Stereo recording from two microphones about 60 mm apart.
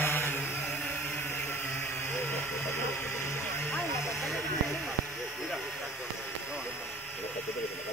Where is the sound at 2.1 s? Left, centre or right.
Left.